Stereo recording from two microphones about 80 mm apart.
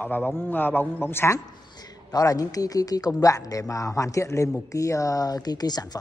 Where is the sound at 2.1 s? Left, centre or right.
Left.